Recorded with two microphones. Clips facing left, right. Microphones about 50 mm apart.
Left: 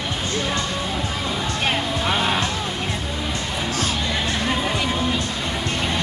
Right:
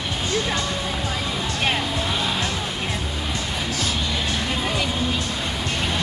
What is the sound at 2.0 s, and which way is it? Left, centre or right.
Music, left.